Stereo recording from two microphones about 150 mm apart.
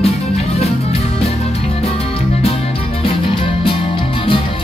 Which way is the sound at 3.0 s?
40° left (ahead or behind).